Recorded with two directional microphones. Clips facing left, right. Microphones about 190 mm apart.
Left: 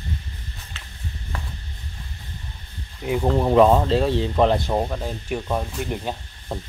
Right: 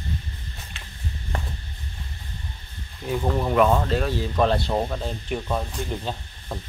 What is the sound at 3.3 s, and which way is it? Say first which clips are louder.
Speech: left 5 dB; 25° left (ahead or behind).